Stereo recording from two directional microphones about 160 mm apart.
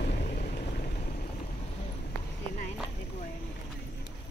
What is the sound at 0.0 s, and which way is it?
Vehicle, 80° left.